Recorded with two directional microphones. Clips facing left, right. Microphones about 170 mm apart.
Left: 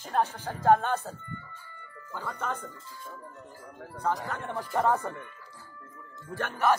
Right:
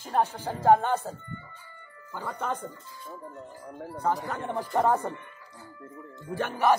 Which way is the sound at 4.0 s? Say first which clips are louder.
Right 2 dB; 10° right (ahead or behind).